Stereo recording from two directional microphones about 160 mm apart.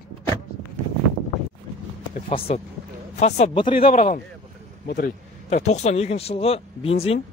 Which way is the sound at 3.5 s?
30° left (ahead or behind).